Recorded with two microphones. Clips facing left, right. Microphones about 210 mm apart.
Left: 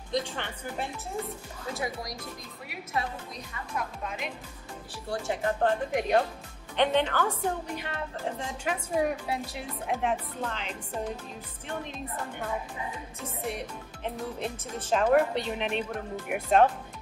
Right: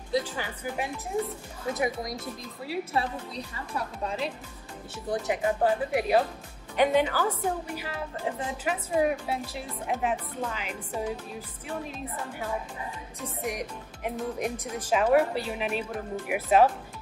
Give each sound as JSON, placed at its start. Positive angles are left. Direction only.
{"t": 0.3, "sound": "a woman's voice", "side_deg": -5}
{"t": 1.7, "sound": "a woman's voice", "side_deg": -20}
{"t": 5.1, "sound": "a woman's voice", "side_deg": -15}
{"t": 13.2, "sound": "a woman's voice", "side_deg": -15}